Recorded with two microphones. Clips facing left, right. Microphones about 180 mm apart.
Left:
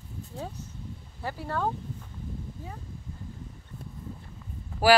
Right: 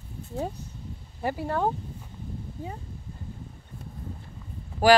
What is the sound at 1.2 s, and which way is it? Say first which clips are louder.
Speech: right 4 dB; 15° right (ahead or behind).